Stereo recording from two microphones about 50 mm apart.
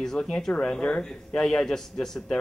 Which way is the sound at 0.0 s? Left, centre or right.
Centre.